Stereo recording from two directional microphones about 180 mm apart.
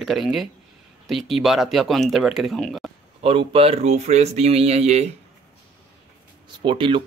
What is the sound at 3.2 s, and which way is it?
Speech, 30° right (ahead or behind).